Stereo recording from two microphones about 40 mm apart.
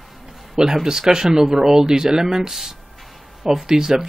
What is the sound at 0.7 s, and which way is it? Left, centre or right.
Speech, centre.